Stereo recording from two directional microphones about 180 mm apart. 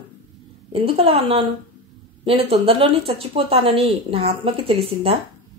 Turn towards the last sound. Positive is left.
turn(degrees=-35)  # may be behind; listen again after turning